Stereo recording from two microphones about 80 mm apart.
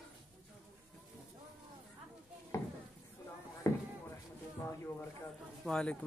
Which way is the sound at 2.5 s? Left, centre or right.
Left.